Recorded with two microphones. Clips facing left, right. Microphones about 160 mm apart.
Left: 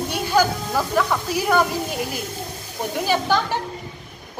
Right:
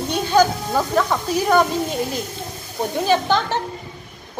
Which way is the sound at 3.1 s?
10° left (ahead or behind).